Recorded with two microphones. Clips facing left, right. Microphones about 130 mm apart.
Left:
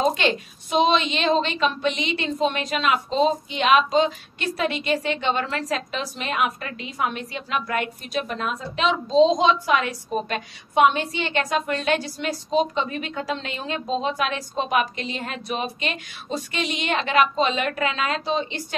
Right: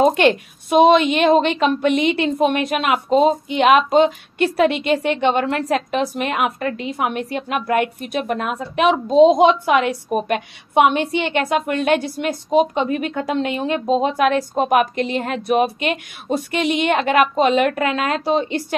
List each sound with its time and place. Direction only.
0.0 s a woman's voice: 55° right (ahead or behind)